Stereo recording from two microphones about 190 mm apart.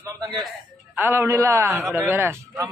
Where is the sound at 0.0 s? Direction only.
20° right (ahead or behind).